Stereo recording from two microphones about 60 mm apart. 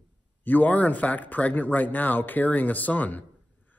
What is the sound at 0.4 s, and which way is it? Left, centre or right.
A man's voice, left.